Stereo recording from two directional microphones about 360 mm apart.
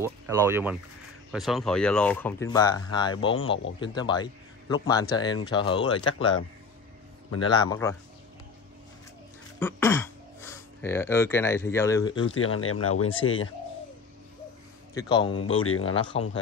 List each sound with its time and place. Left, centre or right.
0.0 s speech: centre
7.3 s speech: centre
9.6 s speech: centre
12.2 s speech: left
15.0 s speech: centre
15.5 s speech: left
16.1 s speech: centre